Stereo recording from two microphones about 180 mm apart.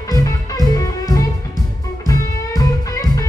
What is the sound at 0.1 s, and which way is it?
Music, 20° left (ahead or behind).